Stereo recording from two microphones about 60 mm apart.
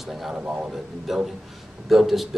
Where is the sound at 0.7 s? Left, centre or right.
Centre.